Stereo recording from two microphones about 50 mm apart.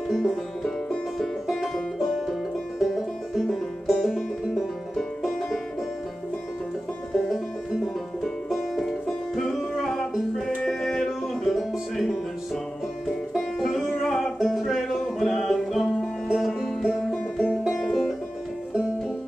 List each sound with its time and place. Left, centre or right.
0.1 s music: centre
4.9 s music: centre
7.1 s music: centre
16.6 s music: centre
17.4 s music: centre
17.8 s music: centre